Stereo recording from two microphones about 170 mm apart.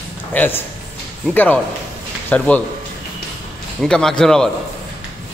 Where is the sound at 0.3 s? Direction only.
10° left (ahead or behind).